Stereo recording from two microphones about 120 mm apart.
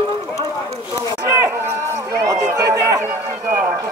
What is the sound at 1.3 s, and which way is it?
A man's voice, 20° right (ahead or behind).